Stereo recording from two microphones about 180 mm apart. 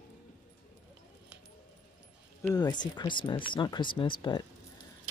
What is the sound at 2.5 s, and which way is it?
Speech, 25° left (ahead or behind).